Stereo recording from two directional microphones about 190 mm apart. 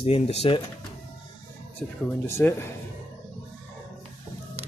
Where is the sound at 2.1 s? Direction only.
10° left (ahead or behind).